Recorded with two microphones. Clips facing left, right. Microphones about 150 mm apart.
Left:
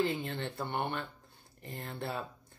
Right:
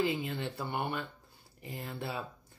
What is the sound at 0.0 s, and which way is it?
Speech, 5° right (ahead or behind).